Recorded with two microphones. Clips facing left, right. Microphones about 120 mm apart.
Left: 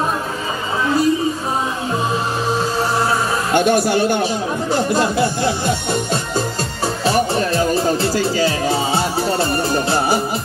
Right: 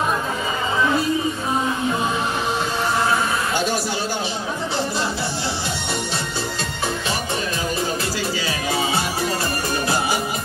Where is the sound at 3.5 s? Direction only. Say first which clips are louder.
Left 8 dB; 55° left (ahead or behind).